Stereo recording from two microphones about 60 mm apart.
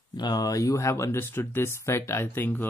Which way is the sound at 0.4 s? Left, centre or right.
Left.